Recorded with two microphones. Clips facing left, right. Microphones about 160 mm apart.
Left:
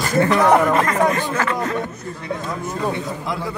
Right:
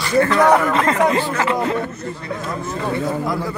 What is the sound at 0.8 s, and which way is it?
Speech, 25° right (ahead or behind).